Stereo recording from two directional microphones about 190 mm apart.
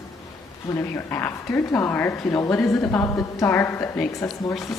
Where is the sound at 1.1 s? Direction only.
10° left (ahead or behind).